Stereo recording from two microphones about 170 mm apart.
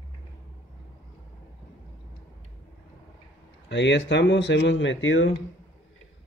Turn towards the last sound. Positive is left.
turn(degrees=90)